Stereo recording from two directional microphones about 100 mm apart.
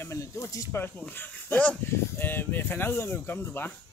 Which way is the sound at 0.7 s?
20° left (ahead or behind).